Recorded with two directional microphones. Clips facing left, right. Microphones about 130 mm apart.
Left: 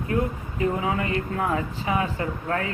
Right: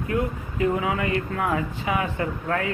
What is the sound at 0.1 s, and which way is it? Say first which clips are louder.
Speech: left 1 dB; 30° left (ahead or behind).